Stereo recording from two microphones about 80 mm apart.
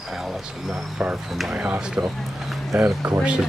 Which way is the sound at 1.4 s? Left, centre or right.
Centre.